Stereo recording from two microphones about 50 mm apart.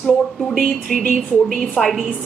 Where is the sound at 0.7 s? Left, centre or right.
Centre.